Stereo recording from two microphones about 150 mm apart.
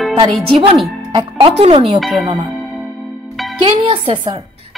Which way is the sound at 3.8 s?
35° right (ahead or behind).